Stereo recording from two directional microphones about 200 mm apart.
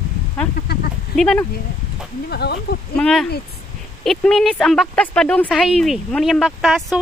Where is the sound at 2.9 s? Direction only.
5° left (ahead or behind).